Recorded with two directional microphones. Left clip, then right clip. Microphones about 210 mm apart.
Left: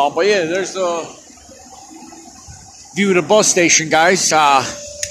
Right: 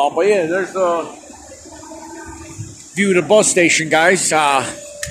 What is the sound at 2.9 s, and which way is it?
Speech, centre (ahead or behind).